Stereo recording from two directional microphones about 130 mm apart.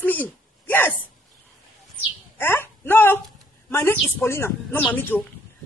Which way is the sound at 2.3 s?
15° left (ahead or behind).